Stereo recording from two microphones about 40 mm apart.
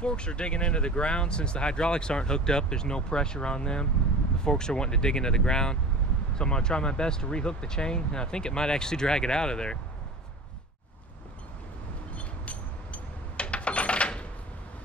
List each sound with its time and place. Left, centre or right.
0.0 s speech: left
12.2 s coin: left